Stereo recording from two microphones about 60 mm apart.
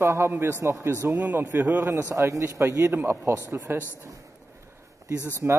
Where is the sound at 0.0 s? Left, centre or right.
Right.